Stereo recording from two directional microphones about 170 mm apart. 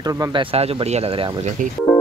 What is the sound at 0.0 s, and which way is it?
Speech, 25° right (ahead or behind).